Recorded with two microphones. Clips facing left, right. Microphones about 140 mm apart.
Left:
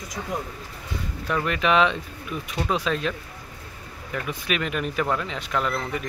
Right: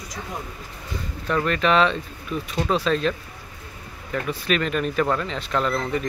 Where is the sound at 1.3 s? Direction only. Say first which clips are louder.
Right 2 dB; 10° left (ahead or behind).